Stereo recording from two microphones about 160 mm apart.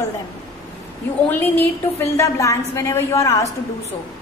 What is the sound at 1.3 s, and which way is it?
A woman's voice, 15° left (ahead or behind).